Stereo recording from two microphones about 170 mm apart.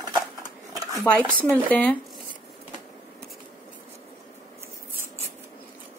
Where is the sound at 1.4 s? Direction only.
10° left (ahead or behind).